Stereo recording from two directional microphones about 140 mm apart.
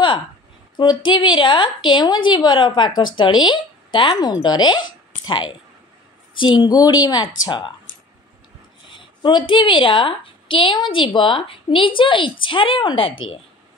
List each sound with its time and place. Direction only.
0.7 s a woman's voice: 35° left (ahead or behind)
8.9 s a woman's voice: 35° left (ahead or behind)